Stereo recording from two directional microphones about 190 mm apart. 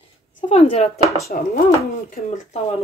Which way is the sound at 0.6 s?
35° left (ahead or behind).